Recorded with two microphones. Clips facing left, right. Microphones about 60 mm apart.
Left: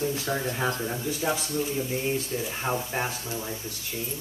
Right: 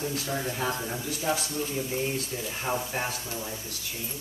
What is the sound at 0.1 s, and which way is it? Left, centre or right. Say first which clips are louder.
Speech: left 3 dB; centre.